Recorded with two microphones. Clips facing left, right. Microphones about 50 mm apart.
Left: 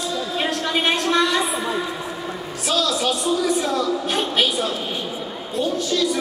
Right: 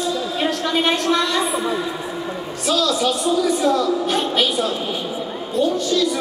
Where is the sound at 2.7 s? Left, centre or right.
Centre.